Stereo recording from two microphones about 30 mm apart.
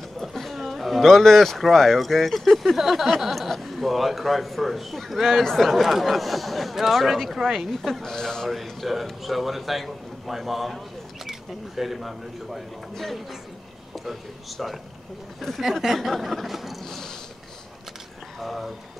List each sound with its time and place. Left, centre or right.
0.3 s speech: centre
5.8 s speech: centre
7.7 s speech: centre
8.8 s speech: centre
12.9 s speech: centre
14.6 s speech: centre
16.8 s a sound: centre
18.4 s speech: centre